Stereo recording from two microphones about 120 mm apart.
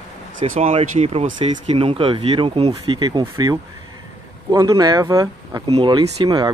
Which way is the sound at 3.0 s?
35° right (ahead or behind).